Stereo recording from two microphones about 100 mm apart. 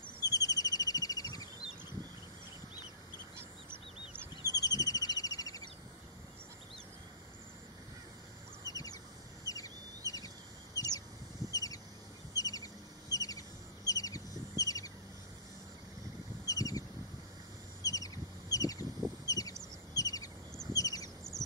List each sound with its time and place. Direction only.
0.2 s bird vocalization: 35° left (ahead or behind)
4.4 s a sound: 40° left (ahead or behind)
8.6 s bird: 35° left (ahead or behind)
9.4 s chicken: 35° left (ahead or behind)
11.5 s a sound: 35° left (ahead or behind)
12.4 s bird: 35° left (ahead or behind)
16.4 s bird: 35° left (ahead or behind)
17.8 s a sound: 35° left (ahead or behind)
19.9 s bird: 35° left (ahead or behind)
21.2 s bird: 5° left (ahead or behind)